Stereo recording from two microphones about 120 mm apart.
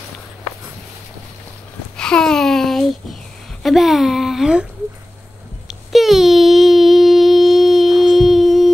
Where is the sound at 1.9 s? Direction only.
5° left (ahead or behind).